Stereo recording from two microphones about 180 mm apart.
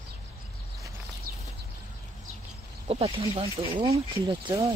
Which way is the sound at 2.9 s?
30° right (ahead or behind).